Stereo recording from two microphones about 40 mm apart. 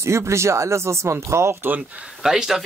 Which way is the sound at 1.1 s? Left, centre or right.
Right.